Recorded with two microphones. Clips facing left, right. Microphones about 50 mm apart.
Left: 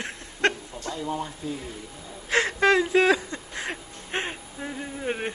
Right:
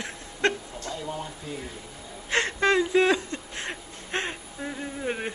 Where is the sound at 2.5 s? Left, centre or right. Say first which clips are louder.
Left 2 dB; left.